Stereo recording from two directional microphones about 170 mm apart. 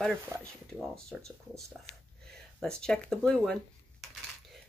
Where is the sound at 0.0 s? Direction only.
5° left (ahead or behind).